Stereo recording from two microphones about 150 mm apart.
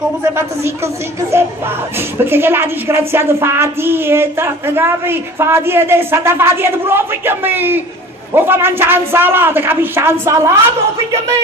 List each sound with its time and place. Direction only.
2.1 s a woman's voice: 15° right (ahead or behind)